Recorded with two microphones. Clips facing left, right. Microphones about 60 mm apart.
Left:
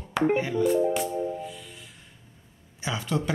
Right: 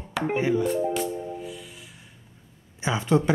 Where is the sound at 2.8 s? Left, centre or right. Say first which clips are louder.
Right 6 dB; right.